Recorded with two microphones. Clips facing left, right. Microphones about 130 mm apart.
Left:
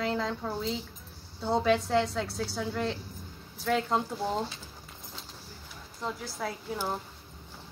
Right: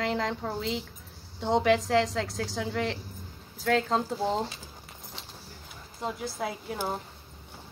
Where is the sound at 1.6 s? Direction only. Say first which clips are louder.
Right 1 dB; 90° right.